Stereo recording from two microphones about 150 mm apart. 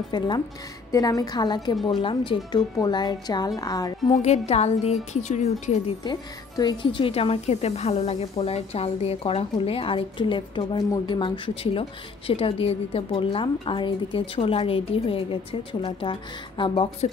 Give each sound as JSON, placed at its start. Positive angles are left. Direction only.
{"t": 0.1, "sound": "speech", "side_deg": 30}
{"t": 4.1, "sound": "a woman's voice", "side_deg": 45}
{"t": 6.0, "sound": "speech", "side_deg": 30}